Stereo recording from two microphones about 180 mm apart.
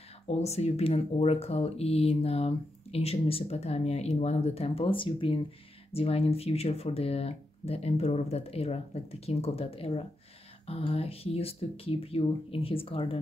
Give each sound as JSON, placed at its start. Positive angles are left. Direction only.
{"t": 0.3, "sound": "speech", "side_deg": 35}